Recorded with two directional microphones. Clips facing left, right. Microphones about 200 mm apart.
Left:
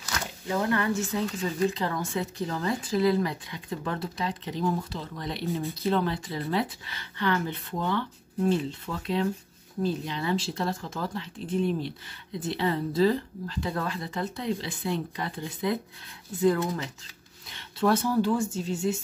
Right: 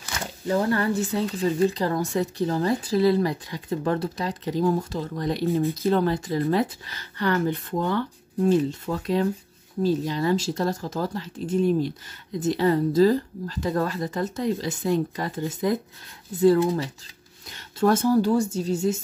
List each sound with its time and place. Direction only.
0.0 s speech: 35° right (ahead or behind)
16.3 s speech: 35° right (ahead or behind)
17.5 s speech: 45° right (ahead or behind)